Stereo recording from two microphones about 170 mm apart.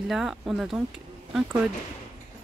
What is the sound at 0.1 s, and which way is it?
Speech, centre (ahead or behind).